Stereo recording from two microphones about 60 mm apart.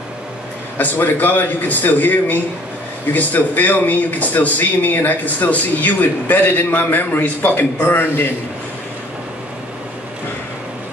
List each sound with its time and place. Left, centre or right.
0.7 s a man's voice: left